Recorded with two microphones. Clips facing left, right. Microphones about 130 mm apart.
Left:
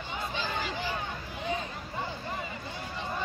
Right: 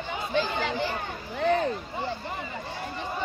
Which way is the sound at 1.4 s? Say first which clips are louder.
Right 10 dB; 70° right (ahead or behind).